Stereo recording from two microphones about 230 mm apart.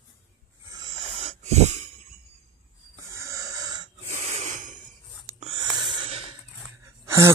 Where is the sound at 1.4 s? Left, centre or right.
Right.